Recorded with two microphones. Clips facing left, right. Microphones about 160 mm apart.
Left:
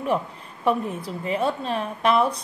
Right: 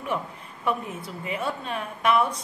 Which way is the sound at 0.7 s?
35° left (ahead or behind).